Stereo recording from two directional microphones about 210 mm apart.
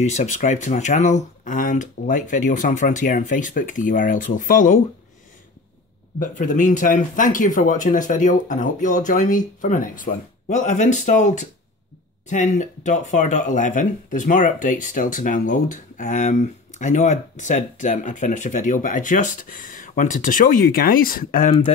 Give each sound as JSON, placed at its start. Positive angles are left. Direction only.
{"t": 0.0, "sound": "speech", "side_deg": 35}
{"t": 6.1, "sound": "speech", "side_deg": 40}